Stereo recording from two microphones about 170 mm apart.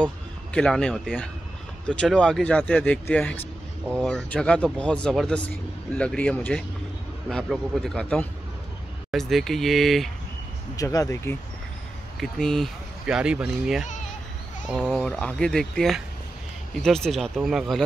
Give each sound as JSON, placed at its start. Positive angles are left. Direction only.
{"t": 0.0, "sound": "speech", "side_deg": 5}
{"t": 10.8, "sound": "speech", "side_deg": 20}
{"t": 12.2, "sound": "speech", "side_deg": 0}
{"t": 14.9, "sound": "speech", "side_deg": 5}